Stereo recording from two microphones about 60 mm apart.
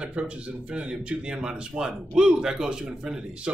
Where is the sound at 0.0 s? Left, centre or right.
Centre.